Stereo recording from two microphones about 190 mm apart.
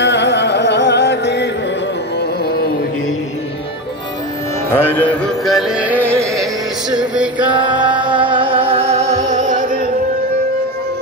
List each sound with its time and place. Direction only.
0.0 s music: 65° left (ahead or behind)
4.6 s music: 10° left (ahead or behind)
5.2 s music: centre (ahead or behind)
7.3 s music: 25° right (ahead or behind); by 9.7 s 40° right (ahead or behind)